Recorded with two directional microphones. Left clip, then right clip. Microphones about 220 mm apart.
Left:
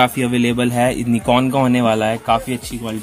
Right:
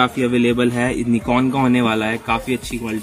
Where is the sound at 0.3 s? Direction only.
25° left (ahead or behind).